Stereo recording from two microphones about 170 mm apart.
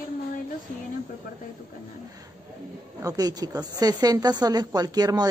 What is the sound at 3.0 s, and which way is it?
A woman's voice, 20° right (ahead or behind).